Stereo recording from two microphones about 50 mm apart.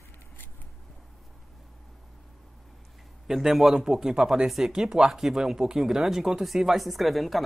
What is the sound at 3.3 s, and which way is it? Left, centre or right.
Speech, centre.